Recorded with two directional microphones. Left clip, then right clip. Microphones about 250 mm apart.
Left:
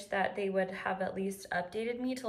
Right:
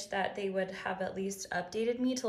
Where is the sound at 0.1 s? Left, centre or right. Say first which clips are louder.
Left 2 dB; centre.